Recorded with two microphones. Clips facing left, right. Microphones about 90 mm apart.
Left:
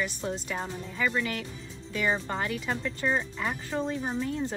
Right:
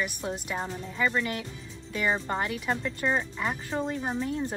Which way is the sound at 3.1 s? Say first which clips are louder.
Right 1 dB; 15° right (ahead or behind).